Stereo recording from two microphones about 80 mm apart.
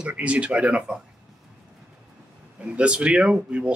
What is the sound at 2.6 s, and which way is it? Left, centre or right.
Speech, centre.